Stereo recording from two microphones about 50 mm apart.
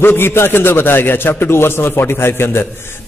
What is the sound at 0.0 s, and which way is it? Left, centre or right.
Mantra, left.